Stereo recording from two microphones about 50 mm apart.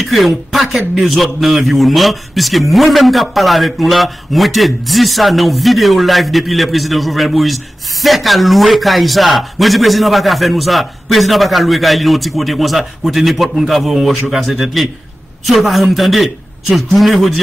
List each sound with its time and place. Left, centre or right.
0.0 s a man's voice: centre